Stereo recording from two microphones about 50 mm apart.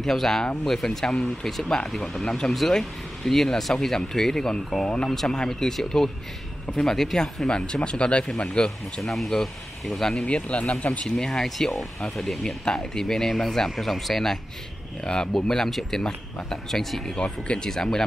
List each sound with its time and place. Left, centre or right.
0.0 s speech: centre
7.4 s speech: centre
9.1 s speech: centre
10.2 s speech: left
17.2 s speech: left
17.6 s speech: centre